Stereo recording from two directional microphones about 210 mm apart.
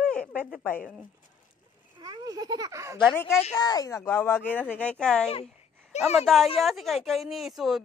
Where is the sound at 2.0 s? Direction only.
20° right (ahead or behind).